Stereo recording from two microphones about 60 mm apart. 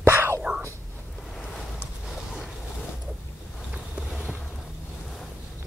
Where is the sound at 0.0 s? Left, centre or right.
Right.